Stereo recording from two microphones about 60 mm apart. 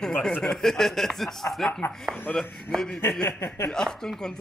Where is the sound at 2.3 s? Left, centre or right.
Left.